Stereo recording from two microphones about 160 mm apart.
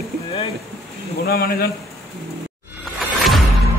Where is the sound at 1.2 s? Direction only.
70° left (ahead or behind).